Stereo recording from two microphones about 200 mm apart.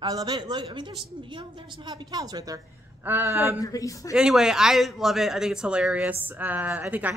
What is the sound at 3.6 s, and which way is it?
Speech, 15° left (ahead or behind).